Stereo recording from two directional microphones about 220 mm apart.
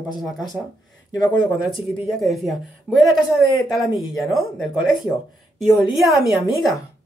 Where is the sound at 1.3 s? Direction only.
20° left (ahead or behind).